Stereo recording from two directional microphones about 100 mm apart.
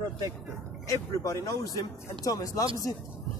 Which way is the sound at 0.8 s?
35° left (ahead or behind).